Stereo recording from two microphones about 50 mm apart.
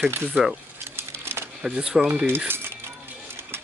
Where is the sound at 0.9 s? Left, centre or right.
Right.